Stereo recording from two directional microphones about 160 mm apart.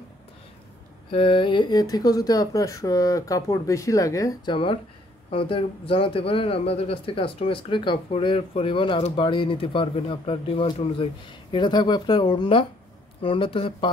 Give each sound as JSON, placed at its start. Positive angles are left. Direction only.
{"t": 1.1, "sound": "speech", "side_deg": 35}